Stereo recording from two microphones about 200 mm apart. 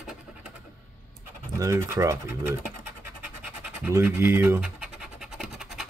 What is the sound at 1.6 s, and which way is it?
Speech, 15° right (ahead or behind).